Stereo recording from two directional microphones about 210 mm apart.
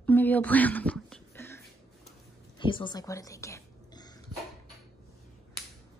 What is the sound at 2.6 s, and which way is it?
A woman's voice, 25° left (ahead or behind).